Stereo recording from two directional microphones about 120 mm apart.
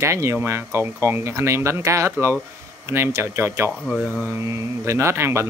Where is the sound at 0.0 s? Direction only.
25° right (ahead or behind).